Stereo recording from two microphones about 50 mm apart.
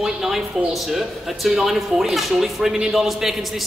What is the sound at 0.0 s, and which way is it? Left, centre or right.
A man's voice, centre.